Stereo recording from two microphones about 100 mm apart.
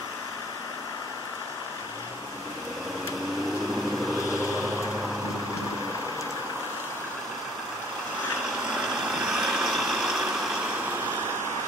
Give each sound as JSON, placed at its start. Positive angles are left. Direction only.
{"t": 8.7, "sound": "vehicle", "side_deg": -5}